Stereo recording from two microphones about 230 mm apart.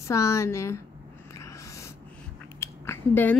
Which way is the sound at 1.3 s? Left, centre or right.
Centre.